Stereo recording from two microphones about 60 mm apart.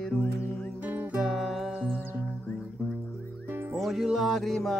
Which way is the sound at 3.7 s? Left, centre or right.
Centre.